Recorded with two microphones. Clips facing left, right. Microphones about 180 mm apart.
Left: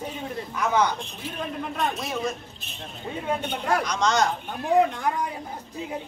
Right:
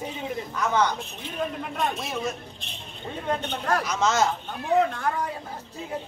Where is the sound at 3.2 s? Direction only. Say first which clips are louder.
Even; 10° left (ahead or behind).